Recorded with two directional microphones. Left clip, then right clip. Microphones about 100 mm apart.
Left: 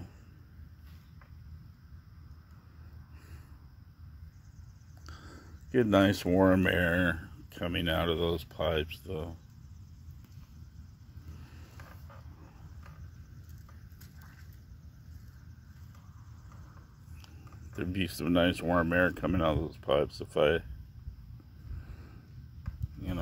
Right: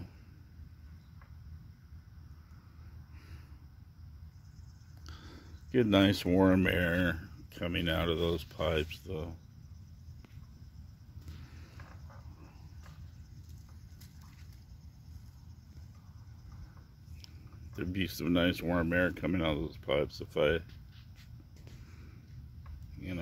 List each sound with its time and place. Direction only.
5.0 s a sound: 15° right (ahead or behind)
6.6 s speech: centre (ahead or behind)
8.4 s speech: 25° right (ahead or behind)
9.0 s speech: centre (ahead or behind)
17.7 s speech: 5° right (ahead or behind)